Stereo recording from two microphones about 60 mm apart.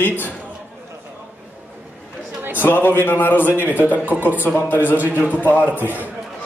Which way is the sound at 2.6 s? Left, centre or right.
Left.